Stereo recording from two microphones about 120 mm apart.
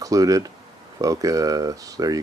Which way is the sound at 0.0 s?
30° right (ahead or behind).